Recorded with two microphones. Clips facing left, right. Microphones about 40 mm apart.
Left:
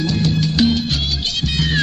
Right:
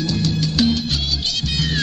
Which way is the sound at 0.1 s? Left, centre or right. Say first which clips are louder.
Left 2 dB; left.